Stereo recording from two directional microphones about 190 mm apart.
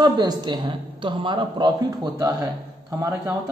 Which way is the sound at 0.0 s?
20° right (ahead or behind).